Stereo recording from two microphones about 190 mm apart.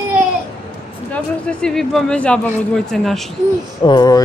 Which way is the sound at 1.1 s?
5° left (ahead or behind).